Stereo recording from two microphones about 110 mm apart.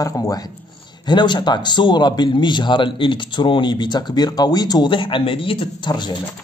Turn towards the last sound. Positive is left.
turn(degrees=45)  # may be behind; listen again after turning